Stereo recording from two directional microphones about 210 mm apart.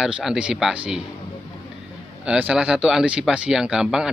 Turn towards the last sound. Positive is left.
turn(degrees=-5)  # may be behind; listen again after turning